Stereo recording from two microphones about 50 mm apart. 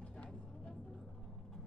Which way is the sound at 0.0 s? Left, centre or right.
Left.